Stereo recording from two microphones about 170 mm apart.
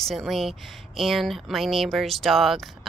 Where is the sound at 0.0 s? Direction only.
Centre (ahead or behind).